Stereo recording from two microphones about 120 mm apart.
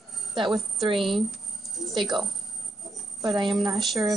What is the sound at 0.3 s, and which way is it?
Speech, 45° right (ahead or behind).